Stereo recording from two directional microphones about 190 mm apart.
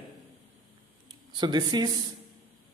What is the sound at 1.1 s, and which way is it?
Speech, 25° right (ahead or behind).